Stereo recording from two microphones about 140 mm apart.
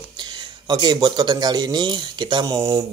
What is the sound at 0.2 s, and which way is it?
Speech, 30° right (ahead or behind).